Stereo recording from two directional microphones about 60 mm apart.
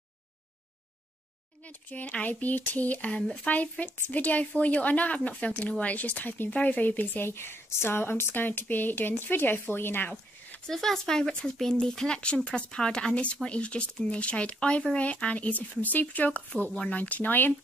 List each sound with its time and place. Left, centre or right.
1.6 s speech: left
7.2 s speech: left
10.7 s speech: centre; by 17.6 s left